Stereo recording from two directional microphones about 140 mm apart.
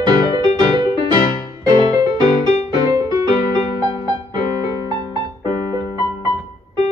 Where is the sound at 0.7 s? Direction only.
30° right (ahead or behind).